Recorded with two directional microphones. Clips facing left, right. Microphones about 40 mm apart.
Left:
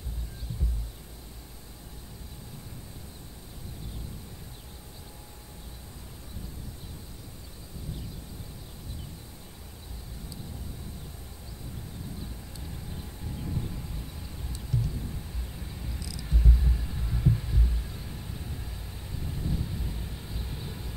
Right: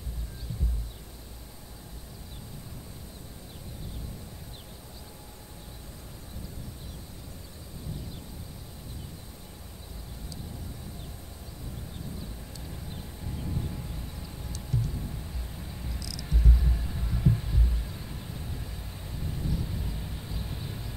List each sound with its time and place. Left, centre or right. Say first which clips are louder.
13.4 s a sound: even; centre
16.0 s cricket: even; left
16.3 s vehicle: even; centre